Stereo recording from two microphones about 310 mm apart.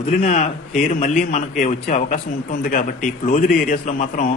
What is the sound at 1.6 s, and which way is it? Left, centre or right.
Speech, left.